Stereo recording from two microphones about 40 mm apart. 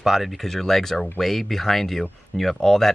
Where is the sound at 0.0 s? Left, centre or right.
Centre.